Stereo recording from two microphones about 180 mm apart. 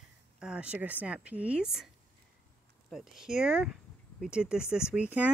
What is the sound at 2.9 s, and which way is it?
A woman's voice, centre (ahead or behind).